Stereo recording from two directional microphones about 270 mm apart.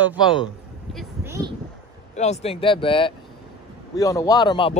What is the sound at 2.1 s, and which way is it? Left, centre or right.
Speech, left.